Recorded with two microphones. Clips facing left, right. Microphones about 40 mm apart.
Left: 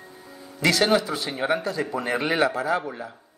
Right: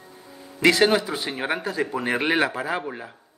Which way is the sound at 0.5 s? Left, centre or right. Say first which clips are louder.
Right 2 dB; right.